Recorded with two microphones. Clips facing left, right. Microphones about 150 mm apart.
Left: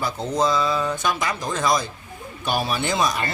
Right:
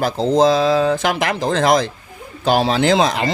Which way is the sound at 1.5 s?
90° right.